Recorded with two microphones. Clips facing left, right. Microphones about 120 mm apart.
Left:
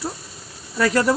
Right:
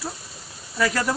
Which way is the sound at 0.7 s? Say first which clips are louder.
Left 4 dB; 40° left (ahead or behind).